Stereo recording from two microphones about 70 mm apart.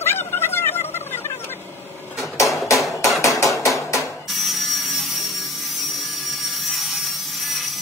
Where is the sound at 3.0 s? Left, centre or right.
Left.